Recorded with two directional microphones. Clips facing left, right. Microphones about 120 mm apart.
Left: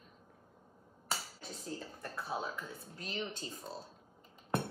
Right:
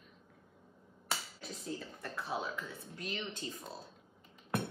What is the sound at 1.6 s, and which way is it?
Speech, 35° left (ahead or behind).